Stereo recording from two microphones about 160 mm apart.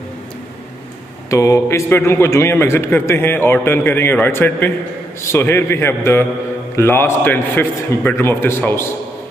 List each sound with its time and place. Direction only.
1.3 s a man's voice: 20° left (ahead or behind)